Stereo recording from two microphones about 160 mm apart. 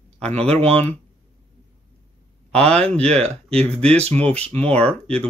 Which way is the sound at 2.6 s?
5° left (ahead or behind).